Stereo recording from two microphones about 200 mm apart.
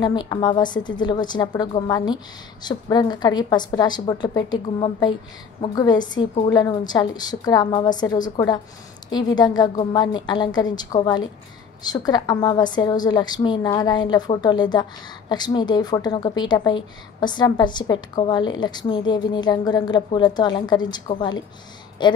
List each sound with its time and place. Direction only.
0.0 s a woman's voice: 20° left (ahead or behind)